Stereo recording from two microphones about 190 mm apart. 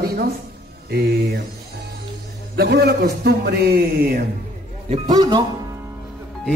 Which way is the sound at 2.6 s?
55° right (ahead or behind).